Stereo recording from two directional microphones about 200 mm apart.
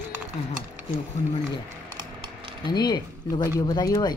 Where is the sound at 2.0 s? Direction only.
20° right (ahead or behind).